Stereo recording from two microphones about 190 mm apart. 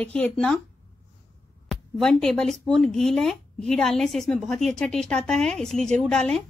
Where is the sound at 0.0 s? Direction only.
5° left (ahead or behind).